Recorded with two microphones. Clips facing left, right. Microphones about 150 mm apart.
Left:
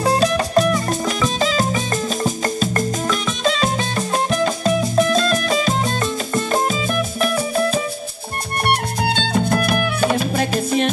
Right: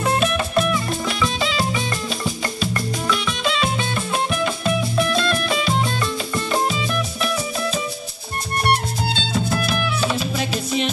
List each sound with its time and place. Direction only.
0.0 s music: 35° left (ahead or behind)